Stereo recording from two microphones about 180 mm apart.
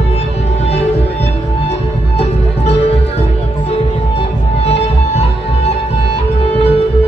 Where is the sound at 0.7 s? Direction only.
35° left (ahead or behind).